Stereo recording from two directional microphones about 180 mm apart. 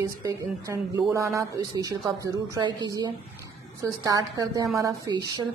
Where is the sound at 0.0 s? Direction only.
20° right (ahead or behind).